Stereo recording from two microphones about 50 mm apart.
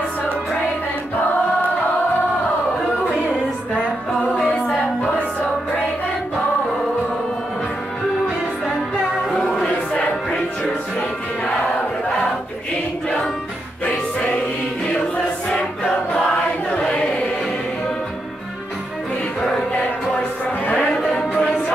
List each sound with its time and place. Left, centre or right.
4.4 s a capella: left
8.6 s music: centre
15.5 s choir: centre
16.7 s chant: centre
20.8 s music: left